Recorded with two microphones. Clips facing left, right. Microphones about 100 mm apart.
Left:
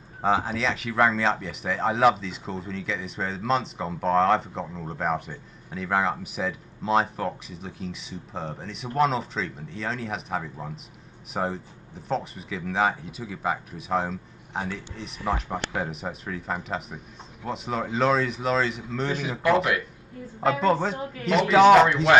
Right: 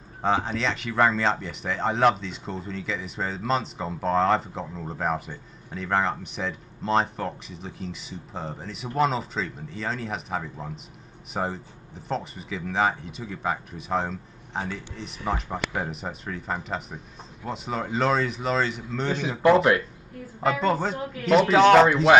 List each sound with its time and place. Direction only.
0.2 s speech: 5° left (ahead or behind)
19.4 s speech: 25° right (ahead or behind)
20.6 s speech: centre (ahead or behind)